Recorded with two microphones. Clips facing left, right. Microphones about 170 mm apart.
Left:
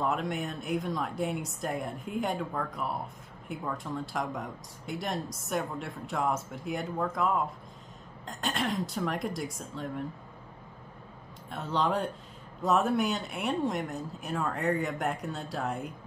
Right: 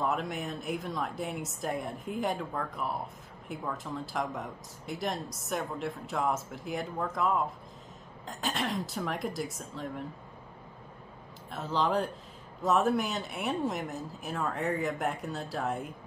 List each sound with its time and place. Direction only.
0.0 s speech: centre (ahead or behind)
11.5 s speech: centre (ahead or behind)